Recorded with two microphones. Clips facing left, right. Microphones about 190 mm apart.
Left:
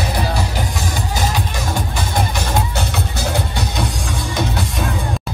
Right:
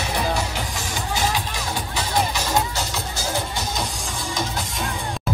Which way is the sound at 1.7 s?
50° left (ahead or behind).